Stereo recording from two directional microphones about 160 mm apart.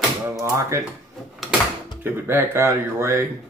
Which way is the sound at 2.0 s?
15° right (ahead or behind).